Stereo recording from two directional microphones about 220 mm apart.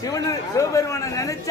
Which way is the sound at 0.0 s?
15° left (ahead or behind).